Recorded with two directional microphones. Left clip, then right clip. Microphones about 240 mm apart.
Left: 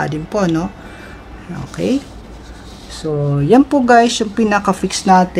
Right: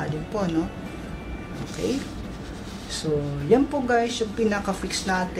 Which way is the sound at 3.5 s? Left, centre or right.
Left.